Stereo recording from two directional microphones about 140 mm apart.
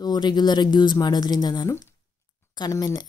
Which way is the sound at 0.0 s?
30° left (ahead or behind).